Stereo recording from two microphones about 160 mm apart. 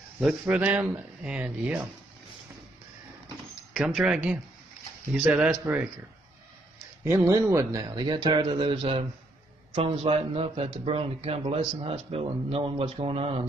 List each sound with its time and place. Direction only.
0.2 s speech: 5° right (ahead or behind)
3.7 s speech: 5° right (ahead or behind)
7.1 s a man's voice: 15° right (ahead or behind); by 13.5 s 40° right (ahead or behind)